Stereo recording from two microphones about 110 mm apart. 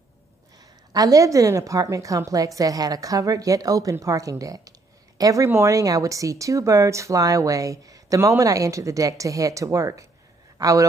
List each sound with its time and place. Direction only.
0.9 s a woman's voice: 30° right (ahead or behind)